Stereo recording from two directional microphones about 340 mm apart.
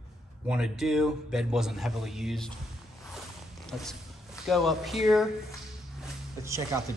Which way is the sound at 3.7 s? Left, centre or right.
Centre.